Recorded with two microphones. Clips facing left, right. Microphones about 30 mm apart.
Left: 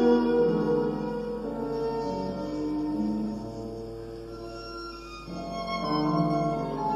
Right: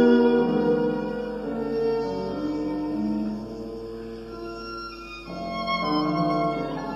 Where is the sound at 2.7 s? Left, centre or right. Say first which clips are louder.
Right 2 dB; right.